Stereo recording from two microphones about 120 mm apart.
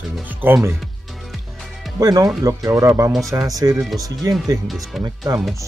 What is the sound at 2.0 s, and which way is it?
Speech, 30° right (ahead or behind).